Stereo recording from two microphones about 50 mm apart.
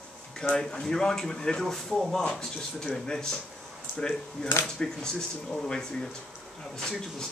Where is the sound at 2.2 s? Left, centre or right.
Centre.